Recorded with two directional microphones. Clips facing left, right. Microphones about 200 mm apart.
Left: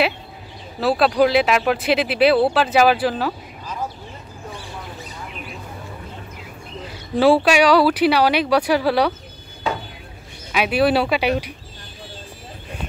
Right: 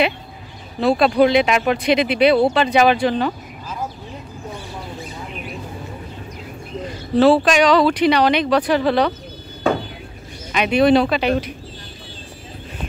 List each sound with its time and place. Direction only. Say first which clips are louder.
0.7 s speech: right 2 dB; 5° left (ahead or behind)
7.2 s speech: right 1 dB; 10° left (ahead or behind)
9.6 s a sound: right 6 dB; 50° right (ahead or behind)
10.5 s speech: right 3 dB; 5° left (ahead or behind)